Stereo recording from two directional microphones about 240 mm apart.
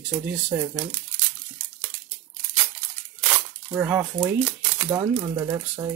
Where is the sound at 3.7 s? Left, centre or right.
Centre.